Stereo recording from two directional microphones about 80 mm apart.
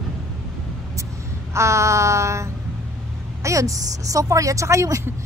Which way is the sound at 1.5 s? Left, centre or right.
Right.